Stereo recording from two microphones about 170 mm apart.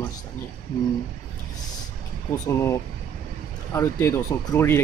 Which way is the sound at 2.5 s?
15° left (ahead or behind).